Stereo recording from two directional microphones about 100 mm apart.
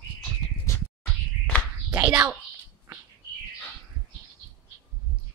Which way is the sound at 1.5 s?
15° left (ahead or behind).